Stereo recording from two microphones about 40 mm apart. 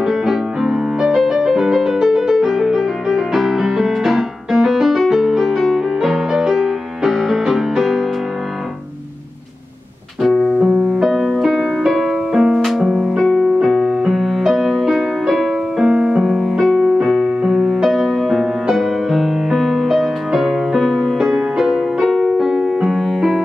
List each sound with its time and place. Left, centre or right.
0.0 s music: centre
10.2 s piano: centre
10.6 s music: centre
12.3 s music: centre
12.5 s music: centre
13.3 s keyboard: centre
13.8 s music: centre
15.8 s music: right
16.2 s music: centre
16.8 s piano: centre
17.8 s music: centre